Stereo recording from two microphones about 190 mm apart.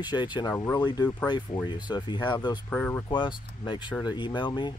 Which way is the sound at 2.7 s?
10° left (ahead or behind).